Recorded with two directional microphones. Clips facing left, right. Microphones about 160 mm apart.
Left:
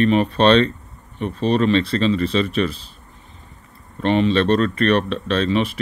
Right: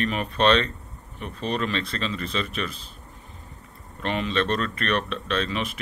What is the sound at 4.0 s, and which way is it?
Speech, 30° left (ahead or behind).